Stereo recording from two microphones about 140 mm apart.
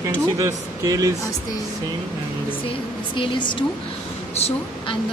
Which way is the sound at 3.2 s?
35° left (ahead or behind).